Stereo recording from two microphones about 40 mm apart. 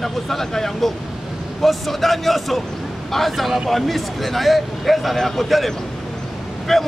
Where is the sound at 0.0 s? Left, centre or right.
Centre.